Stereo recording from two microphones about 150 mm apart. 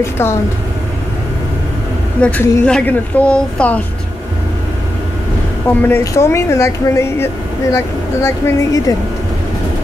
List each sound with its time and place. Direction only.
0.0 s speech: 20° left (ahead or behind)
2.2 s speech: 10° left (ahead or behind)
5.8 s speech: 15° left (ahead or behind)